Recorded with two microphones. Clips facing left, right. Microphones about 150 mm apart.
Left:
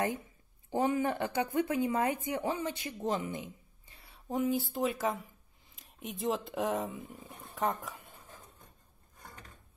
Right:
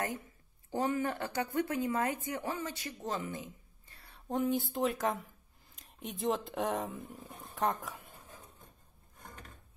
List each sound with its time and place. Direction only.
0.7 s speech: 15° left (ahead or behind)
3.9 s speech: centre (ahead or behind)